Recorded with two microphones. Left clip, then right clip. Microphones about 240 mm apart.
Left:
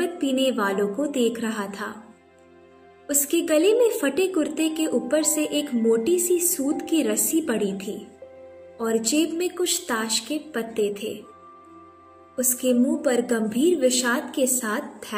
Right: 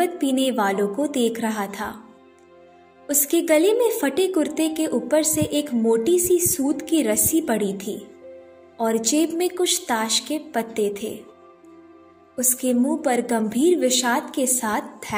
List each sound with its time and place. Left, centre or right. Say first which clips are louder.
0.0 s a woman's voice: right 2 dB; centre
3.1 s a woman's voice: right 3 dB; centre
12.4 s a woman's voice: even; centre